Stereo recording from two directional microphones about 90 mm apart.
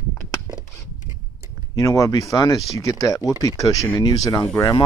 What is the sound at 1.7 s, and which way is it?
Speech, 40° left (ahead or behind).